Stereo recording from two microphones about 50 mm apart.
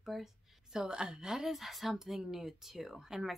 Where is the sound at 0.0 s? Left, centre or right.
Centre.